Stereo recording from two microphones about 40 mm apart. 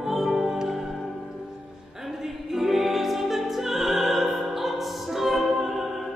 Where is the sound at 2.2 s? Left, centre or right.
Centre.